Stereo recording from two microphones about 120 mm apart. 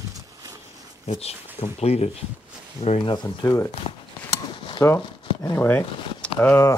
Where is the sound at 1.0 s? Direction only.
65° left (ahead or behind).